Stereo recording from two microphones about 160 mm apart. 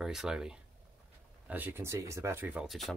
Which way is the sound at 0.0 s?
5° right (ahead or behind).